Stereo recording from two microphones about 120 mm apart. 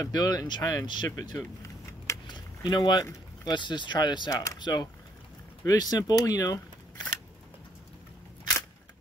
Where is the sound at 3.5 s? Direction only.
40° left (ahead or behind).